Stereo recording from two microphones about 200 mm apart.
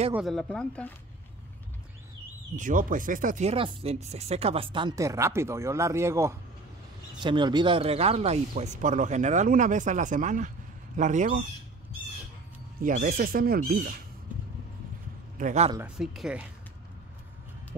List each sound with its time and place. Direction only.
0.1 s speech: centre (ahead or behind)
2.5 s speech: 40° right (ahead or behind)
12.8 s speech: 45° right (ahead or behind)
15.3 s a man's voice: 35° right (ahead or behind)
16.0 s speech: centre (ahead or behind)